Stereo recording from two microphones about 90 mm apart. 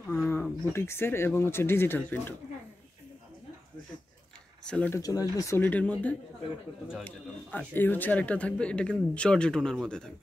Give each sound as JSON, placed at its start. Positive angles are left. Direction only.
{"t": 0.3, "sound": "speech", "side_deg": 25}
{"t": 4.6, "sound": "speech", "side_deg": 10}
{"t": 4.9, "sound": "speech", "side_deg": 40}
{"t": 5.6, "sound": "speech", "side_deg": 15}